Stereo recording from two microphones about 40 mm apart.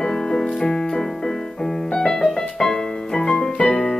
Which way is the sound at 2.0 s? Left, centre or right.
Left.